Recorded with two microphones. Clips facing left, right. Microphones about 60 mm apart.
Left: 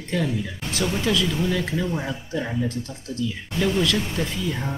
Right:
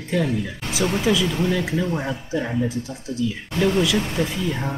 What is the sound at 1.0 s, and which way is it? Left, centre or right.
Speech, centre.